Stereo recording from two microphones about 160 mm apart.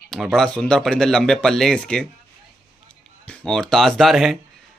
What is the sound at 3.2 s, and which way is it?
Speech, 5° left (ahead or behind).